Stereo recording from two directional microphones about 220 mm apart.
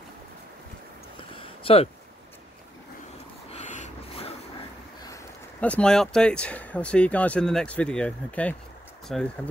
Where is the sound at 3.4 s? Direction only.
35° left (ahead or behind).